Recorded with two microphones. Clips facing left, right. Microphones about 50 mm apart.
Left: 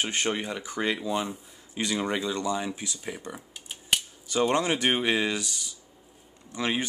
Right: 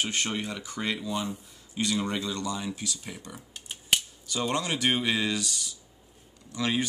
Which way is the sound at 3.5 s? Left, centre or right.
Centre.